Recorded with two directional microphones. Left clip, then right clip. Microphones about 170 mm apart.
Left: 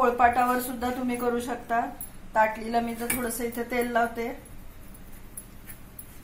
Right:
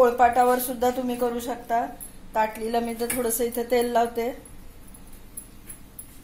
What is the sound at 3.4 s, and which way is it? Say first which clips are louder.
Speech: right 8 dB; 40° right (ahead or behind).